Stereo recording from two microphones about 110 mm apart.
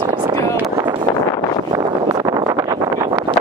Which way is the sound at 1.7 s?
35° right (ahead or behind).